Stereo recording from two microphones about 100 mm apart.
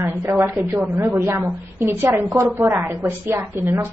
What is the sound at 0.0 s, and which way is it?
A woman's voice, 20° right (ahead or behind).